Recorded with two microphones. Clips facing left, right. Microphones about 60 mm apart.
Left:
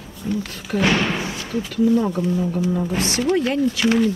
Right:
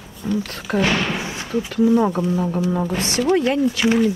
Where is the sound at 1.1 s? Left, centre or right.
Right.